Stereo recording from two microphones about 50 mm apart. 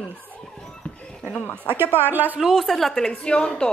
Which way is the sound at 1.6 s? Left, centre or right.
Right.